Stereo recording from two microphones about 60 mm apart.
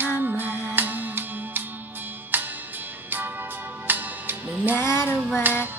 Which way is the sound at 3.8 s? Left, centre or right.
Right.